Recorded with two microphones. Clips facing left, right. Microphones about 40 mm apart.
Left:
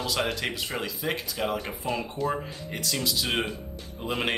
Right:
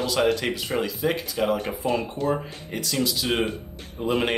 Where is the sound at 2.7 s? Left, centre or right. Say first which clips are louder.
Right 4 dB; centre.